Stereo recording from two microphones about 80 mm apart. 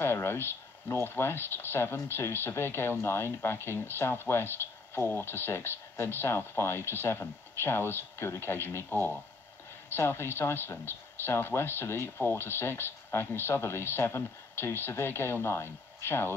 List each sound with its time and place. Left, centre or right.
0.0 s speech: left
9.8 s speech: left